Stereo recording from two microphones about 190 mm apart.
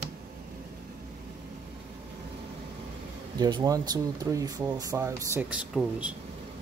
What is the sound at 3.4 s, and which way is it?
Speech, 20° right (ahead or behind).